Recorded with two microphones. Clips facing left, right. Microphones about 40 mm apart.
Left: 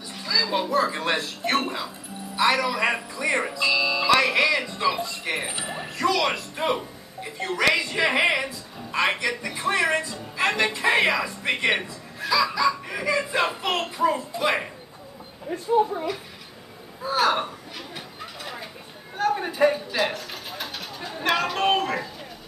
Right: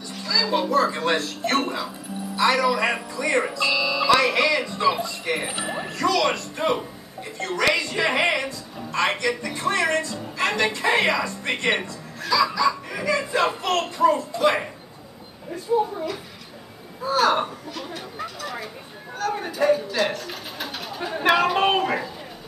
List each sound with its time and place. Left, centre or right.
0.1 s speech: centre
4.8 s speech: centre
5.5 s speech: centre
5.9 s speech: centre
17.1 s speech: centre
17.7 s a sound: centre
21.0 s speech: centre